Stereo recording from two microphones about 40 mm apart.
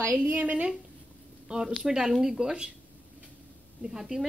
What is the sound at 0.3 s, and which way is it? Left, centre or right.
Speech, right.